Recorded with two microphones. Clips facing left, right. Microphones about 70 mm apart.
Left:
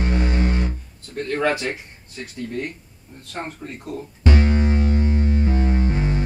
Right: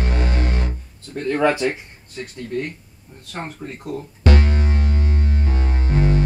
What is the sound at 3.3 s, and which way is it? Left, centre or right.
Speech, right.